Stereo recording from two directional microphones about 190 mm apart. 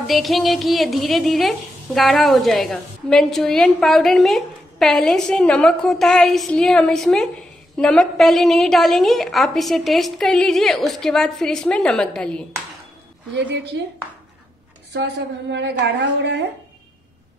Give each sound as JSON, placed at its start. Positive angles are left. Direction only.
{"t": 0.0, "sound": "a woman's voice", "side_deg": 0}
{"t": 13.3, "sound": "a woman's voice", "side_deg": -70}
{"t": 15.0, "sound": "a woman's voice", "side_deg": -65}